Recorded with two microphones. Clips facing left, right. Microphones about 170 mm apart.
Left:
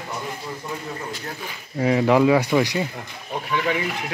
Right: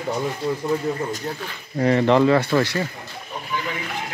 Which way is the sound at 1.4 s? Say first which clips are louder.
Right 1 dB; 5° left (ahead or behind).